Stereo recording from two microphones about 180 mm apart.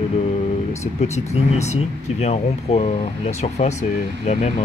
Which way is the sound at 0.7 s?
40° left (ahead or behind).